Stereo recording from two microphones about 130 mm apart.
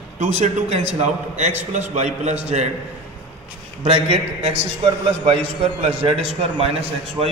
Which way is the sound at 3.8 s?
50° right (ahead or behind).